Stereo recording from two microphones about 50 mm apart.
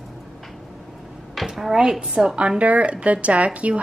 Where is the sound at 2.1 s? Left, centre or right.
Right.